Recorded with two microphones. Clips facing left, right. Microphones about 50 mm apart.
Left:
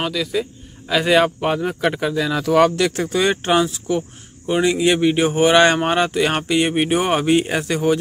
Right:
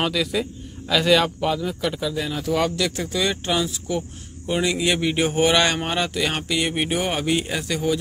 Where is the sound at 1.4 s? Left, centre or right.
Left.